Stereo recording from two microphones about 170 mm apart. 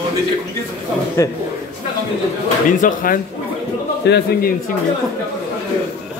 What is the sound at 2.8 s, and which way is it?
Speech, 55° left (ahead or behind).